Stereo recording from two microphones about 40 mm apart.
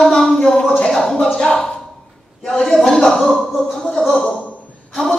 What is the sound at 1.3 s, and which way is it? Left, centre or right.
Speech, centre.